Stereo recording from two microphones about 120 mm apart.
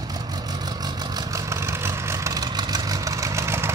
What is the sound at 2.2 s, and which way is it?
Vehicle, 30° right (ahead or behind).